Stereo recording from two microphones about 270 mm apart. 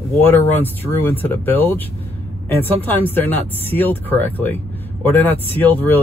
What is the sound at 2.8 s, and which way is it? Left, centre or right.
Speech, centre.